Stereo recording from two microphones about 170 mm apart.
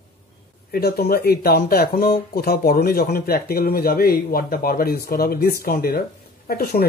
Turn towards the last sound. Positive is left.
turn(degrees=65)  # may be behind; listen again after turning